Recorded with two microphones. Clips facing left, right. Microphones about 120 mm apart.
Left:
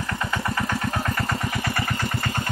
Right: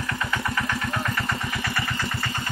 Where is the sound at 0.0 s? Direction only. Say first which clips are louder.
Left 1 dB; 30° left (ahead or behind).